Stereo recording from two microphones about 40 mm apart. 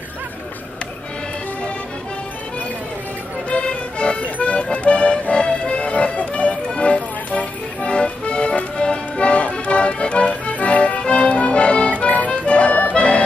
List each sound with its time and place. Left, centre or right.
3.4 s music: left